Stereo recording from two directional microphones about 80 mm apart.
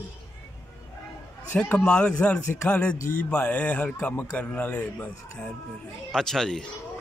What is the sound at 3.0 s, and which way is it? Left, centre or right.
Speech, left.